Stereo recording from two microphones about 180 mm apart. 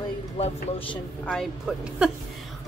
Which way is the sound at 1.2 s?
5° left (ahead or behind).